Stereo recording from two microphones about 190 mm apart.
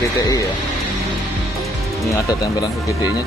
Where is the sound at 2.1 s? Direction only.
15° left (ahead or behind).